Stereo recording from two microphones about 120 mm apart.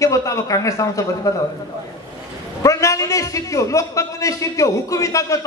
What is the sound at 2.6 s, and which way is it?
A man's voice, 25° left (ahead or behind).